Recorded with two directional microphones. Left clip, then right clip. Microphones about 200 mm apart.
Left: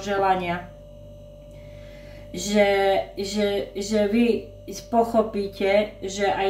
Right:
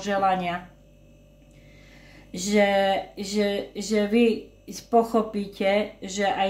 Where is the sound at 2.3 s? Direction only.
40° right (ahead or behind).